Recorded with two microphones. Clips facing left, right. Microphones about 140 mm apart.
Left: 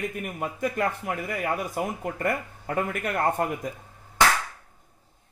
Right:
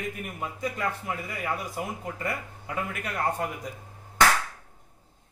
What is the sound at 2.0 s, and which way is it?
Speech, 50° left (ahead or behind).